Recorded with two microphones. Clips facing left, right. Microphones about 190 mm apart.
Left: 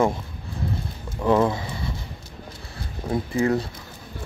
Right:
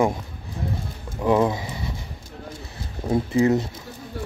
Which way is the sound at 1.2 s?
15° right (ahead or behind).